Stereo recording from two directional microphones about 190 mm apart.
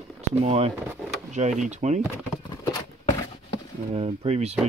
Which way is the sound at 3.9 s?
30° right (ahead or behind).